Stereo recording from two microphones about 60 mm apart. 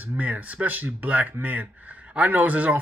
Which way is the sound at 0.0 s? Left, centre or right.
Right.